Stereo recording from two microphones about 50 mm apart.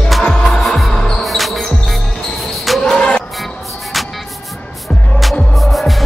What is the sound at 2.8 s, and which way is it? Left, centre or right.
Basketball bounce, centre.